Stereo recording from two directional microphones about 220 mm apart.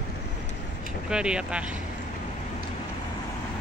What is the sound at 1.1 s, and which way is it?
Speech, 5° right (ahead or behind).